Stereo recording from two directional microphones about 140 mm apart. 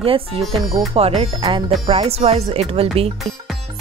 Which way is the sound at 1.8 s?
45° right (ahead or behind).